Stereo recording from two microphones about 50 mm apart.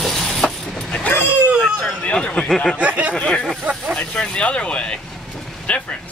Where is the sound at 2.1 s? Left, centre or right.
Left.